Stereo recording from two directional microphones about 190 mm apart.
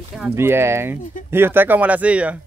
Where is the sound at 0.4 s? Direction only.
15° right (ahead or behind).